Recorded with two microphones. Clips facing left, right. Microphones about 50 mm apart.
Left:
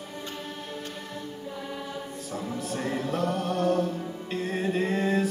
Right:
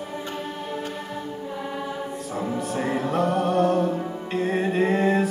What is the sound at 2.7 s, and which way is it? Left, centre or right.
Music, centre.